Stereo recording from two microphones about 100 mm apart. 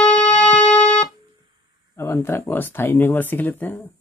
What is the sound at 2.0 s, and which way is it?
Speech, 25° left (ahead or behind).